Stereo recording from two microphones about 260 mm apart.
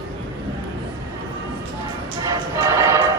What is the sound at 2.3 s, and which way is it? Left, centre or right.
Choir, centre.